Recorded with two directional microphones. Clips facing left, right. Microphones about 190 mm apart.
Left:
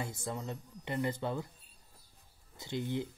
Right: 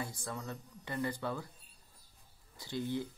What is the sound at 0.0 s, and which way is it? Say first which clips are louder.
Speech: left 2 dB; 20° left (ahead or behind).